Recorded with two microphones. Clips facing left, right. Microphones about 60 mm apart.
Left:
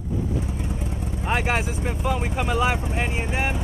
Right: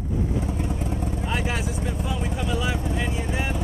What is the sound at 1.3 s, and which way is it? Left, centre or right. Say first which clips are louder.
Speech: left 6 dB; left.